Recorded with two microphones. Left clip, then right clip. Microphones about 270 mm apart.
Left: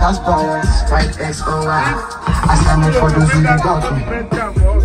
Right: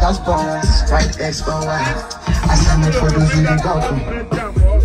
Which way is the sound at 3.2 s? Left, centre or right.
Centre.